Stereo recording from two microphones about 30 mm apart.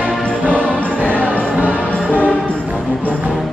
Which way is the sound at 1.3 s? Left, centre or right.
Right.